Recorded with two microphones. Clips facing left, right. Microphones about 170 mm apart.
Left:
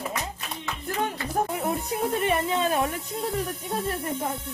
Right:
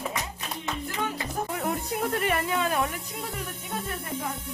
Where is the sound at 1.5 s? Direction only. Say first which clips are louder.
Left 2 dB; 20° left (ahead or behind).